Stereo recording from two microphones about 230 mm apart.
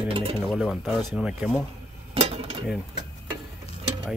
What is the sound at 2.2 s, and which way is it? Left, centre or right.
Cutlery, right.